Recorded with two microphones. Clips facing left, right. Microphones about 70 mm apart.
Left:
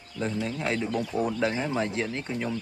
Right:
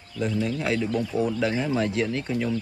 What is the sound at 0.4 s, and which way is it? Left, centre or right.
Speech, centre.